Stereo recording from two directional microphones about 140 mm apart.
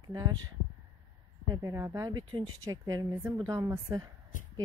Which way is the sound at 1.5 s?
25° right (ahead or behind).